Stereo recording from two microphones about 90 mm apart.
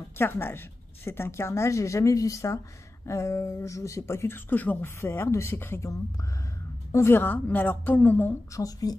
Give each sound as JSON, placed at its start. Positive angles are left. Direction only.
{"t": 0.2, "sound": "a woman's voice", "side_deg": 25}
{"t": 6.9, "sound": "a woman's voice", "side_deg": 25}
{"t": 8.5, "sound": "speech", "side_deg": 45}